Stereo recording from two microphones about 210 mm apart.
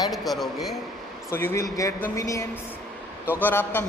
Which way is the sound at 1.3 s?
10° left (ahead or behind).